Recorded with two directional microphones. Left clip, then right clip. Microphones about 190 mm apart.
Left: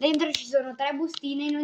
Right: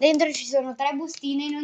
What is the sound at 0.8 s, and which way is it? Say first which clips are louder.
Speech: right 2 dB; 40° right (ahead or behind).